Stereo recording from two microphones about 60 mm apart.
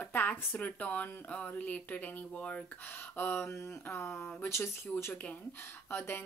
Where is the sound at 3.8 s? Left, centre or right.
Left.